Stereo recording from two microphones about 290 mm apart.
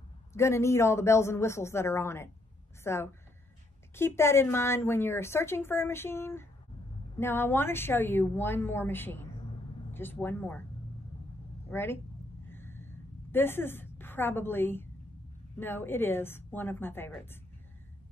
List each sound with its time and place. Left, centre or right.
0.3 s a woman's voice: centre
11.7 s a woman's voice: centre
12.4 s a sound: centre
13.3 s a woman's voice: centre